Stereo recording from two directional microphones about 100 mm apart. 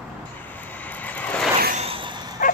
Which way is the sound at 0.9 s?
15° left (ahead or behind).